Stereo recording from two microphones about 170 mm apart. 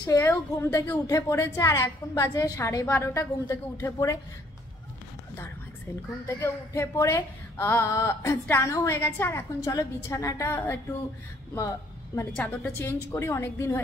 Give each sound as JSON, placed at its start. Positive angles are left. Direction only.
{"t": 0.0, "sound": "a woman's voice", "side_deg": 20}
{"t": 6.2, "sound": "speech", "side_deg": 15}
{"t": 12.2, "sound": "speech", "side_deg": 10}